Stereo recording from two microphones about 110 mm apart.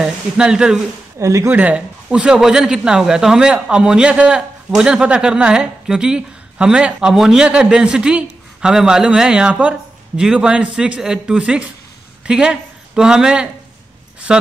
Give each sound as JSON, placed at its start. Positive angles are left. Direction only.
{"t": 0.0, "sound": "a man's voice", "side_deg": -5}
{"t": 1.2, "sound": "speech", "side_deg": -25}
{"t": 1.5, "sound": "a man's voice", "side_deg": -15}